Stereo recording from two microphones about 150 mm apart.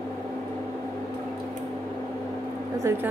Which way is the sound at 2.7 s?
15° right (ahead or behind).